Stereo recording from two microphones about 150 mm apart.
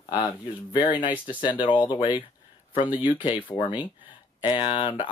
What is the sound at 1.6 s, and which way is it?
Speech, 35° left (ahead or behind).